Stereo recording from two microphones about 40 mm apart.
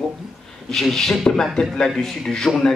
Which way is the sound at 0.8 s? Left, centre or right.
Centre.